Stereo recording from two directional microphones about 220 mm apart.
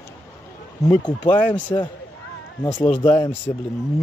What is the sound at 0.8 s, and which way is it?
Speech, 20° left (ahead or behind).